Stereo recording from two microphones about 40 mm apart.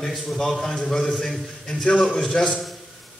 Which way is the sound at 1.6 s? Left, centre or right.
Centre.